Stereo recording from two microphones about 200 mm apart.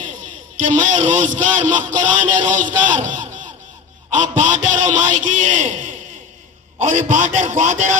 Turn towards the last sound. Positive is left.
turn(degrees=-40)  # may be behind; listen again after turning